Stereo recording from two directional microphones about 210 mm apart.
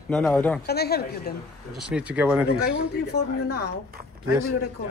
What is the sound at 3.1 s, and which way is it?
Speech, 50° left (ahead or behind).